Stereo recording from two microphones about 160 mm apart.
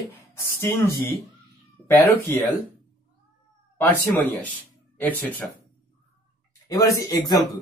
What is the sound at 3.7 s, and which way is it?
Speech, 10° left (ahead or behind).